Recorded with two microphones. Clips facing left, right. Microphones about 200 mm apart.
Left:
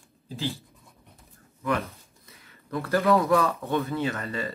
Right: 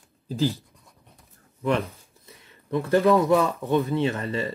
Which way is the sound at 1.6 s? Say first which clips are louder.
Right 4 dB; 30° right (ahead or behind).